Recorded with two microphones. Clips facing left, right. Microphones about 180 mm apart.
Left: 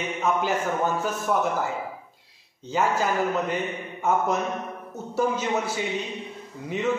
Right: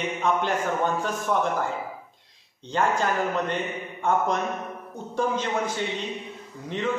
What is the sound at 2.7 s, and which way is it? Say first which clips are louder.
A man's voice: even; 5° left (ahead or behind).